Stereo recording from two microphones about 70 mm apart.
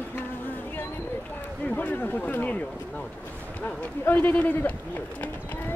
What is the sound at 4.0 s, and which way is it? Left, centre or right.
Bird, left.